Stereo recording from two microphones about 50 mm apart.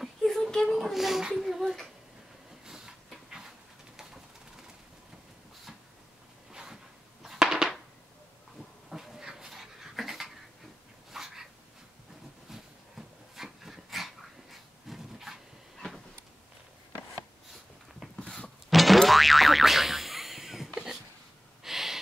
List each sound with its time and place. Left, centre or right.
0.0 s a sound: centre
0.7 s a child's voice: centre
2.6 s a sound: centre
3.9 s bird: centre
6.5 s a sound: centre
8.9 s dog: centre
12.4 s dog: centre
18.2 s music: left
18.7 s boing: centre
21.6 s gasp: centre